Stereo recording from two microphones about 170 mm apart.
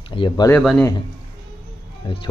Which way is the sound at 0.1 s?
30° left (ahead or behind).